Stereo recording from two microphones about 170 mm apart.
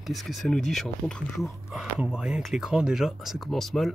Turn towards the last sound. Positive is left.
turn(degrees=0)  # may be behind; listen again after turning